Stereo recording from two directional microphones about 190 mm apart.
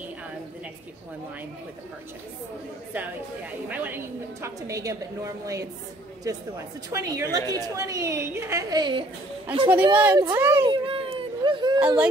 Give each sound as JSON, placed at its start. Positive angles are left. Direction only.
{"t": 3.6, "sound": "a woman's voice", "side_deg": -10}
{"t": 6.9, "sound": "a woman's voice", "side_deg": -20}
{"t": 9.9, "sound": "a woman's voice", "side_deg": -10}
{"t": 10.7, "sound": "baby cry", "side_deg": -25}
{"t": 11.8, "sound": "a woman's voice", "side_deg": -10}